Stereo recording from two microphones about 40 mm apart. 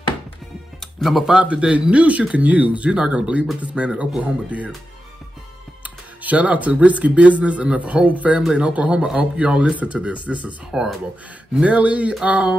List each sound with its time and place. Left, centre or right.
1.0 s speech: centre
1.4 s speech: right
2.9 s speech: right
6.2 s speech: right
10.7 s speech: centre
11.6 s speech: right